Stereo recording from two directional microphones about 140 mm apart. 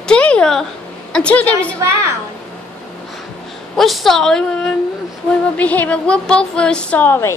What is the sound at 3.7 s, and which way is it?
A woman's voice, centre (ahead or behind).